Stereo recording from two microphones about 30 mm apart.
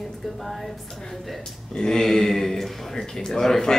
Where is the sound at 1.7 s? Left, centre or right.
Left.